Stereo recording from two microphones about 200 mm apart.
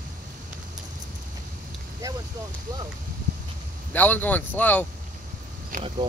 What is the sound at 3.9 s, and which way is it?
Speech, 10° left (ahead or behind).